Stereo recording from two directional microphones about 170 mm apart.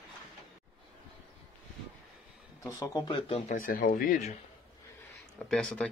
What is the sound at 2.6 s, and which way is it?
Speech, 20° left (ahead or behind).